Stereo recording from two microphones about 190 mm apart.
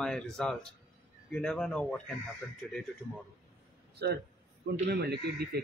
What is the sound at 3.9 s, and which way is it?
A man's voice, 60° right (ahead or behind).